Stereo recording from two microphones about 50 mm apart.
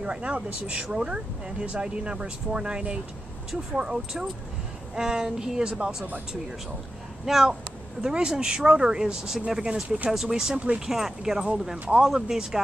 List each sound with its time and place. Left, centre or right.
0.0 s speech: right
7.2 s speech: centre
8.0 s speech: centre
9.8 s speech: right
10.1 s speech: centre